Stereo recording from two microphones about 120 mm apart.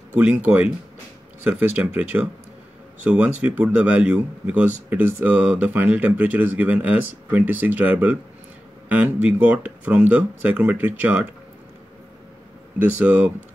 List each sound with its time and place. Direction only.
0.1 s speech: 15° right (ahead or behind)
13.0 s speech: 10° right (ahead or behind)